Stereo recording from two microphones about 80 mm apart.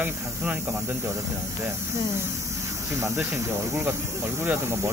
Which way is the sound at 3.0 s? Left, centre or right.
Right.